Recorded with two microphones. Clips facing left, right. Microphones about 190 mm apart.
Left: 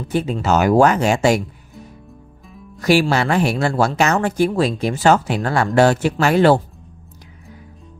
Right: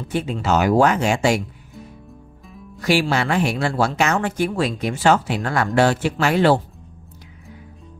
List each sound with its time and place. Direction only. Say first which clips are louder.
0.1 s speech: left 2 dB; 40° left (ahead or behind)
2.8 s speech: left 3 dB; 40° left (ahead or behind)
5.0 s speech: left 2 dB; 45° left (ahead or behind)